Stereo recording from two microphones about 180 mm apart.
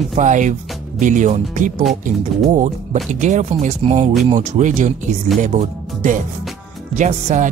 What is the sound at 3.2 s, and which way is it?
Speech, 40° right (ahead or behind).